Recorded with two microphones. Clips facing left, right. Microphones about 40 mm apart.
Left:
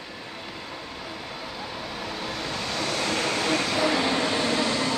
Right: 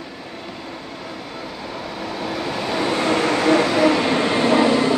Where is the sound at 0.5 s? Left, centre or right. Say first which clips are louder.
Right 4 dB; centre; by 3.8 s right.